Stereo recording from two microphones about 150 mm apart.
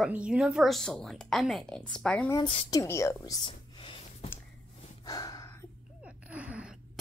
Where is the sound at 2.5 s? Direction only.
35° left (ahead or behind).